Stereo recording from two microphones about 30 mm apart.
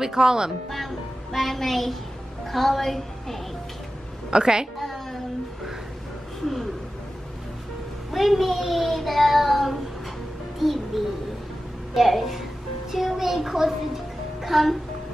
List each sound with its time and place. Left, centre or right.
0.0 s speech: right
0.7 s a woman's voice: centre
4.3 s speech: right
4.7 s music: centre
6.4 s speech: centre
8.1 s a child's voice: centre
8.8 s child singing: centre
10.6 s a child's voice: centre
11.9 s a child's voice: centre